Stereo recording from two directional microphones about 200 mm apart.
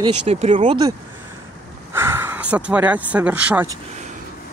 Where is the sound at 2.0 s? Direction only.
10° right (ahead or behind).